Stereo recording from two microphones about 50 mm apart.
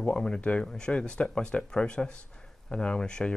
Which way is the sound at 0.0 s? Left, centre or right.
Centre.